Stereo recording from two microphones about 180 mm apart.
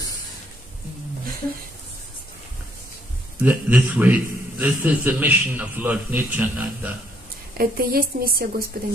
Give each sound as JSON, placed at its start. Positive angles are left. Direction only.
{"t": 3.4, "sound": "a man's voice", "side_deg": -10}
{"t": 7.5, "sound": "a woman's voice", "side_deg": -55}